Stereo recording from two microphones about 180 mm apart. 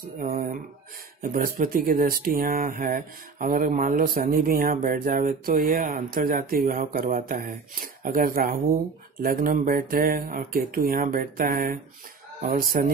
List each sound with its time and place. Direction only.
0.2 s speech: 50° right (ahead or behind)